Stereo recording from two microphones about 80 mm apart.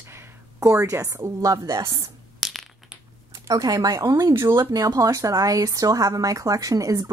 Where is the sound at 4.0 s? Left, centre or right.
Right.